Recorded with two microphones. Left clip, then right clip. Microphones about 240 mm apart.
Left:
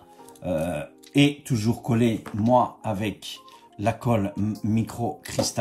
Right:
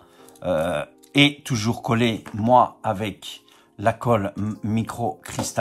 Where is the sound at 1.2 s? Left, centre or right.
Right.